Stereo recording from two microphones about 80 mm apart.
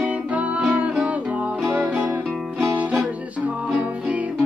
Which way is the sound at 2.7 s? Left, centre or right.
Centre.